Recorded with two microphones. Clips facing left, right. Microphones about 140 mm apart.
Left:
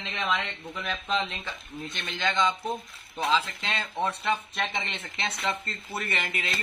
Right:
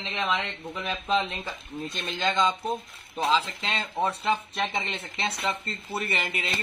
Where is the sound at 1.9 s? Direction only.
35° right (ahead or behind).